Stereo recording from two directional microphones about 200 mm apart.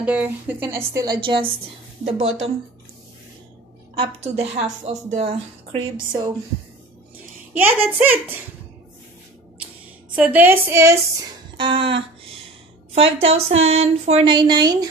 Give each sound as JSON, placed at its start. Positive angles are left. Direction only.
{"t": 0.0, "sound": "a woman's voice", "side_deg": -10}
{"t": 2.0, "sound": "a woman's voice", "side_deg": -30}
{"t": 3.9, "sound": "a woman's voice", "side_deg": -25}
{"t": 7.5, "sound": "a woman's voice", "side_deg": -10}
{"t": 10.1, "sound": "a woman's voice", "side_deg": -10}
{"t": 11.5, "sound": "a sound", "side_deg": -25}
{"t": 12.9, "sound": "a woman's voice", "side_deg": -30}